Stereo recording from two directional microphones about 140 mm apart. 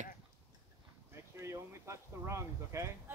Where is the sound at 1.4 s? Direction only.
20° right (ahead or behind).